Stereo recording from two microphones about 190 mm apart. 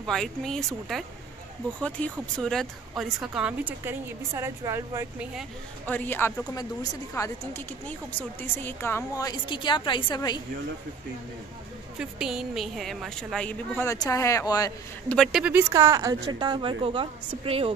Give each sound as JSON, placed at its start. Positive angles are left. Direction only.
{"t": 0.0, "sound": "a woman's voice", "side_deg": 0}
{"t": 5.9, "sound": "a woman's voice", "side_deg": 10}
{"t": 8.4, "sound": "a woman's voice", "side_deg": 10}
{"t": 12.0, "sound": "a woman's voice", "side_deg": -5}
{"t": 15.1, "sound": "a woman's voice", "side_deg": -5}